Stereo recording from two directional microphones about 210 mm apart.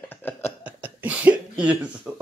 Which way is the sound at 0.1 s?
10° left (ahead or behind).